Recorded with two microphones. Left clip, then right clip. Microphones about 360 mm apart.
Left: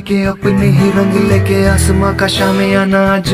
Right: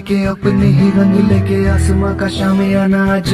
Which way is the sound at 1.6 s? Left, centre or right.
Left.